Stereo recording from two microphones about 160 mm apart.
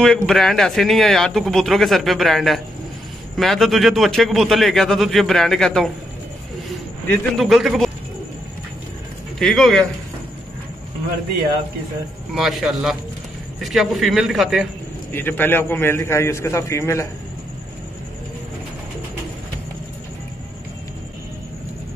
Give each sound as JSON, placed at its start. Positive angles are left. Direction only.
{"t": 0.0, "sound": "speech", "side_deg": 5}
{"t": 7.3, "sound": "speech", "side_deg": 0}
{"t": 9.4, "sound": "speech", "side_deg": 0}
{"t": 12.4, "sound": "speech", "side_deg": 0}
{"t": 15.1, "sound": "a man's voice", "side_deg": 10}